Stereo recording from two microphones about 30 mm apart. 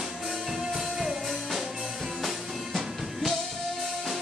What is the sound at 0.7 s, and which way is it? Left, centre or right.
Music, centre.